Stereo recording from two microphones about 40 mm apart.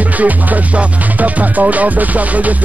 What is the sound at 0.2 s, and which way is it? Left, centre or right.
Music, right.